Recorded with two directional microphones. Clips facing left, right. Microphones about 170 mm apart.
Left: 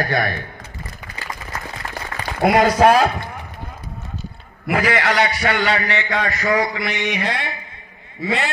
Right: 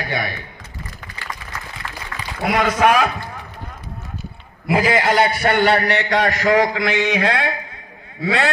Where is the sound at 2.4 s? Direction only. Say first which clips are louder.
Left 4 dB; 45° left (ahead or behind).